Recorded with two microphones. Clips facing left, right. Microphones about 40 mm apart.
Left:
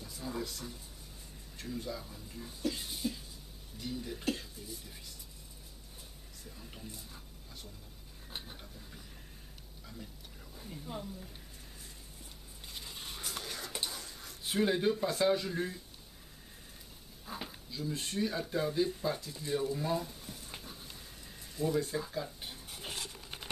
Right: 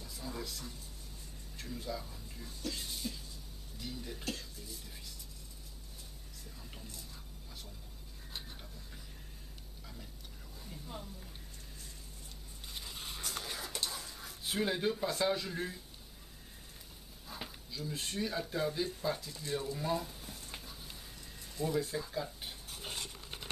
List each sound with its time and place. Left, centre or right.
0.0 s music: centre
1.6 s speech: centre
4.2 s speech: centre
6.5 s speech: centre
6.9 s speech: centre
10.5 s a woman's voice: centre
12.6 s dog: centre
13.8 s speech: centre
17.4 s speech: centre
22.1 s a sound: centre